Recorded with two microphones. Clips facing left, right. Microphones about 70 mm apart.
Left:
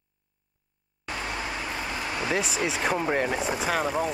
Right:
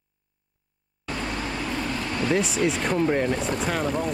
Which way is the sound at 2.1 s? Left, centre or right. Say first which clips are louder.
Right 4 dB; centre.